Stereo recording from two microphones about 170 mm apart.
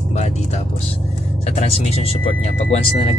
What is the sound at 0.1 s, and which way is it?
Music, 40° left (ahead or behind).